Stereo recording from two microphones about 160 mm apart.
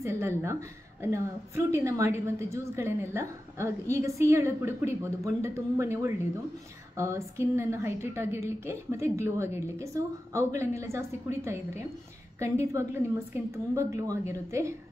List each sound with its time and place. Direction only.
0.0 s a woman's voice: 15° right (ahead or behind)